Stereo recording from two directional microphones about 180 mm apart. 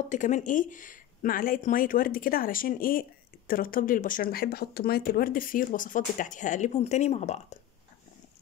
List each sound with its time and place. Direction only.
0.1 s speech: 45° left (ahead or behind)